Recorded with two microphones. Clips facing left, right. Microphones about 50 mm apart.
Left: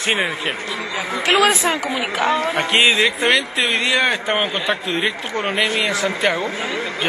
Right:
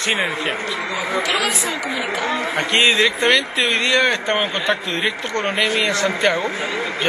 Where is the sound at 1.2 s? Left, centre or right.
Left.